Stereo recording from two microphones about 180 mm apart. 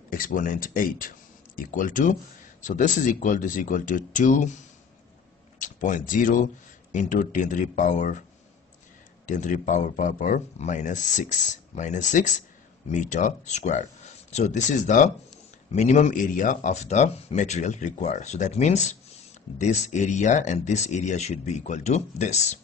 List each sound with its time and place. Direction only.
0.1 s speech: 50° left (ahead or behind)
9.2 s speech: 45° left (ahead or behind)